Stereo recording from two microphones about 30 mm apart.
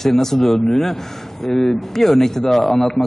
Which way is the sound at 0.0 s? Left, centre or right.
Centre.